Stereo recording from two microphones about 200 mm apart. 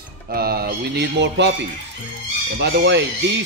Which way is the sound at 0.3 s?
50° right (ahead or behind).